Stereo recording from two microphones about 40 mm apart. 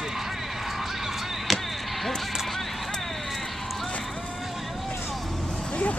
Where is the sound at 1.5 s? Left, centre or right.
Centre.